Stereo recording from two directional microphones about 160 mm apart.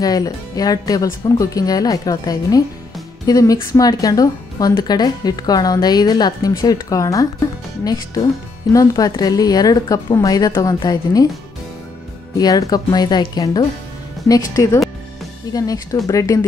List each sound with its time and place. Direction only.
0.0 s a woman's voice: 25° left (ahead or behind)
12.4 s a woman's voice: 25° left (ahead or behind)